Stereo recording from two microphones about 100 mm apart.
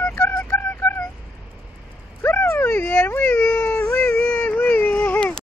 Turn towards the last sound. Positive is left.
turn(degrees=15)  # may be behind; listen again after turning